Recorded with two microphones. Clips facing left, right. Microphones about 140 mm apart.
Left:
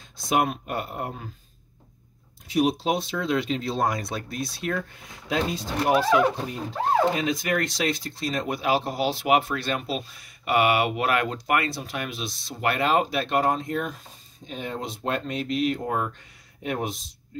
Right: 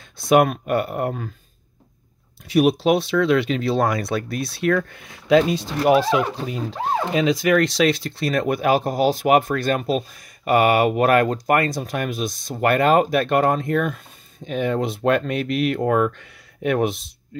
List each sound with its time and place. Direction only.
0.3 s speech: 65° right (ahead or behind)
2.4 s speech: 70° right (ahead or behind)
7.2 s speech: 90° right; by 17.1 s 65° right (ahead or behind)